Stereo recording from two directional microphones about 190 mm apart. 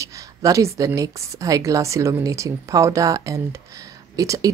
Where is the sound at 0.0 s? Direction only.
15° right (ahead or behind).